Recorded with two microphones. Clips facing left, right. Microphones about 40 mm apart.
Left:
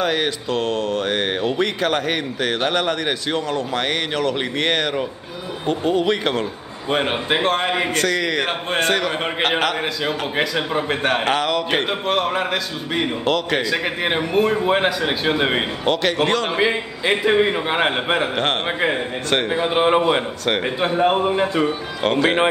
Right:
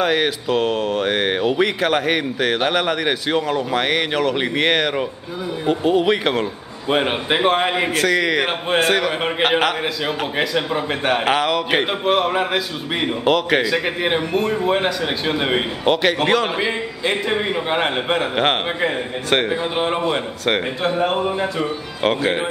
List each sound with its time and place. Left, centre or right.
0.0 s speech: centre
14.0 s a man's voice: centre
15.8 s speech: centre
16.5 s a man's voice: centre
18.3 s speech: centre
19.5 s a man's voice: centre
22.0 s speech: centre